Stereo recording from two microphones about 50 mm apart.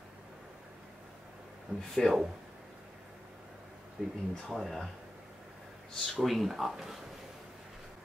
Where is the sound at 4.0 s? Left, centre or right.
Right.